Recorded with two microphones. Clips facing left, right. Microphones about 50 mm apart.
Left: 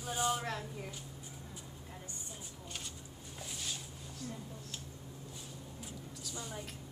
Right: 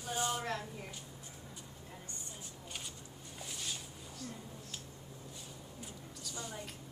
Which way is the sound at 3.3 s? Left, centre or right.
Centre.